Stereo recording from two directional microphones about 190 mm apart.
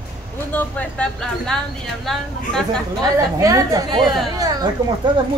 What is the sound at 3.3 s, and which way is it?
A woman's voice, 15° right (ahead or behind).